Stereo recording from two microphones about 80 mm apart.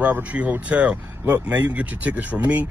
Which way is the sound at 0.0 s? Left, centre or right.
Centre.